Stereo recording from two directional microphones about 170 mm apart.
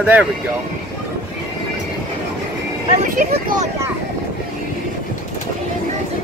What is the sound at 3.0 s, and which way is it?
Speech, 50° right (ahead or behind).